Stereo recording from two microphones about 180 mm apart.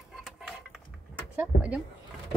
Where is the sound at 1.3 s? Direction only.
5° right (ahead or behind).